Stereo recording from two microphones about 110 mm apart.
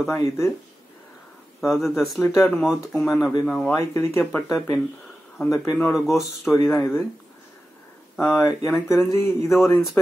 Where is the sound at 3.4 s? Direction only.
Centre (ahead or behind).